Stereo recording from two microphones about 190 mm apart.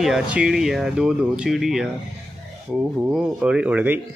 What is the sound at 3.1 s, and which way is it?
Speech, 5° right (ahead or behind).